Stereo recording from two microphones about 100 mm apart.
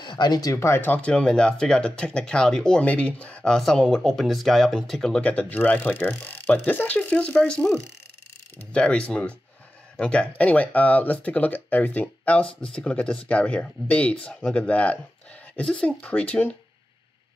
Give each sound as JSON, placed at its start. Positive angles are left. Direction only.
{"t": 0.0, "sound": "speech", "side_deg": 50}
{"t": 5.2, "sound": "speech", "side_deg": 15}